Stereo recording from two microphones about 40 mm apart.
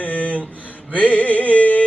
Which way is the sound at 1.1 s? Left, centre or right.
Left.